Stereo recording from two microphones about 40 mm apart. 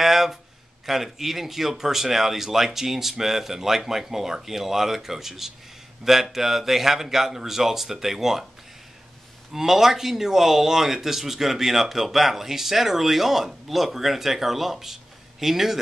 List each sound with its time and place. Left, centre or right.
0.0 s a sound: centre
0.8 s speech: centre
9.5 s speech: centre